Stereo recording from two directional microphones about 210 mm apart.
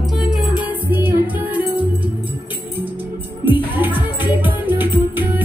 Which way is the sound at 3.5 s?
10° right (ahead or behind).